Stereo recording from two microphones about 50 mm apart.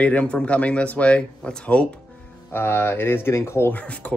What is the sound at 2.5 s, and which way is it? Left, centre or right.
Speech, left.